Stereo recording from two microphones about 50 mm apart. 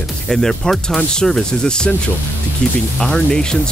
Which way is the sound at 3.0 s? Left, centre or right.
Centre.